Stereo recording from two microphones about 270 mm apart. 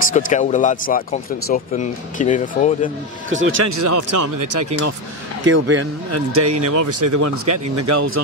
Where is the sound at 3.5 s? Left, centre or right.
Right.